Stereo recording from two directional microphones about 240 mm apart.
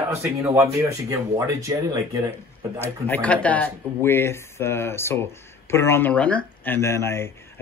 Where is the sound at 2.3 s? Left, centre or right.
Centre.